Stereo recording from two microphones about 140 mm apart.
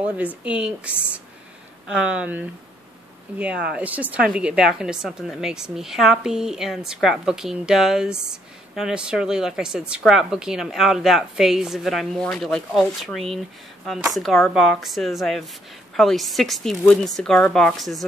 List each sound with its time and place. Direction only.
0.4 s a woman's voice: 5° right (ahead or behind)